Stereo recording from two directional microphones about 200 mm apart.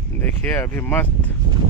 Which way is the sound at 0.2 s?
10° left (ahead or behind).